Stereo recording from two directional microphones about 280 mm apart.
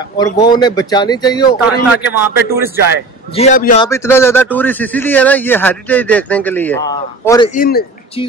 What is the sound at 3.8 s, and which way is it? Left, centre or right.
A man's voice, centre.